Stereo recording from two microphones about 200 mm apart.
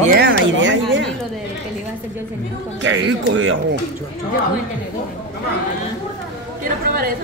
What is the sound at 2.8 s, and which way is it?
Speech, 70° right (ahead or behind).